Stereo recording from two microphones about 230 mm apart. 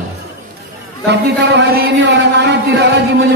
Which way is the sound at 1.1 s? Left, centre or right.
Right.